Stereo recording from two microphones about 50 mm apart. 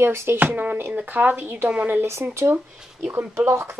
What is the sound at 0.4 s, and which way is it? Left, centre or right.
Speech, right.